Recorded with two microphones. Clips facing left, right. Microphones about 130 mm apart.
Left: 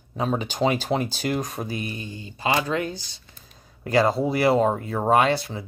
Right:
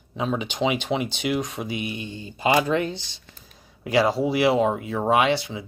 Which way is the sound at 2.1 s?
25° right (ahead or behind).